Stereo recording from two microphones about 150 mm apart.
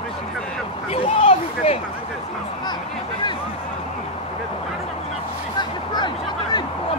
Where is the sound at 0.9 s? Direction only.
45° left (ahead or behind).